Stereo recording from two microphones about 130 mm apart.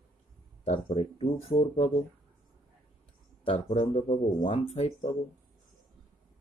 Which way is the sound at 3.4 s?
45° left (ahead or behind).